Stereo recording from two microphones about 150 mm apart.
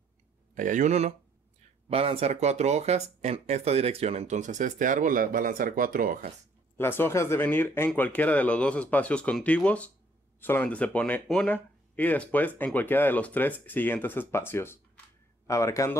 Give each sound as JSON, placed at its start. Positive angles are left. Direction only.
{"t": 0.6, "sound": "speech", "side_deg": -60}
{"t": 6.8, "sound": "speech", "side_deg": 15}